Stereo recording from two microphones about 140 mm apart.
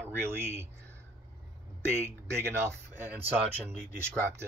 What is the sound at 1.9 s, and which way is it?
Speech, 20° right (ahead or behind).